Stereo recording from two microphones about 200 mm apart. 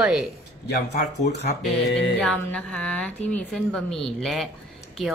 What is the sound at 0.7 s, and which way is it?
Speech, 55° left (ahead or behind).